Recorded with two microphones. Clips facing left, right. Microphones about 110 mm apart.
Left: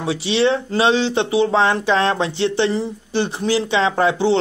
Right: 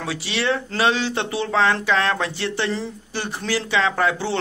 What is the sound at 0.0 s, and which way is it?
Speech, 20° left (ahead or behind).